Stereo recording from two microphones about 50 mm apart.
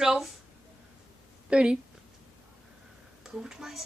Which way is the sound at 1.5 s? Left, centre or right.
Centre.